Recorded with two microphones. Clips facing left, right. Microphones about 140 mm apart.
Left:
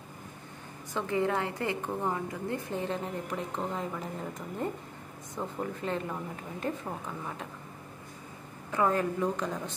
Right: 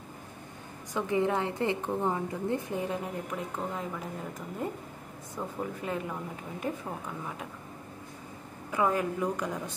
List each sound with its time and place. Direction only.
0.9 s a woman's voice: 20° right (ahead or behind)
5.4 s a woman's voice: 5° right (ahead or behind)
8.7 s a woman's voice: 10° right (ahead or behind)